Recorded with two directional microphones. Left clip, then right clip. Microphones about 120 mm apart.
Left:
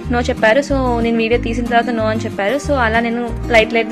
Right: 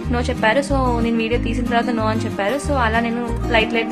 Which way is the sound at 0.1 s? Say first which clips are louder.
Left 5 dB; 25° left (ahead or behind).